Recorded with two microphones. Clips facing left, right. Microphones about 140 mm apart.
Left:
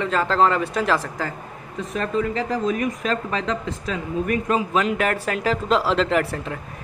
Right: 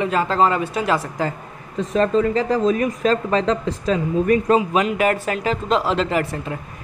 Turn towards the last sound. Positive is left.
turn(degrees=0)  # may be behind; listen again after turning